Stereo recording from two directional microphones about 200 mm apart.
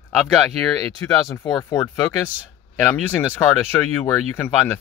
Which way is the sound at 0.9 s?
15° left (ahead or behind).